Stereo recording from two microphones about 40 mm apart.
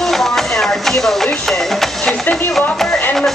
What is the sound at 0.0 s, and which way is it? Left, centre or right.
Music, centre.